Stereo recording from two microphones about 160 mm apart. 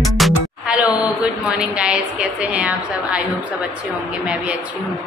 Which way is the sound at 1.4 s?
5° right (ahead or behind).